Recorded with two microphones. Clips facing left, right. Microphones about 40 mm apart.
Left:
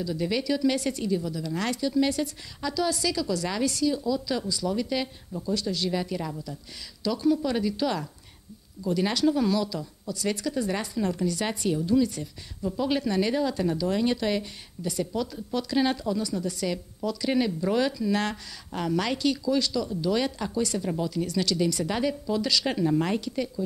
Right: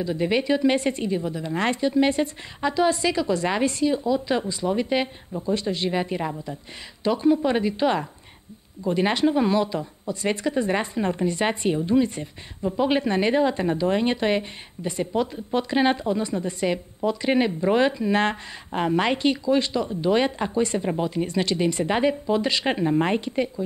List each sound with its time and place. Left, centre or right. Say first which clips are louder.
0.0 s speech: right 5 dB; right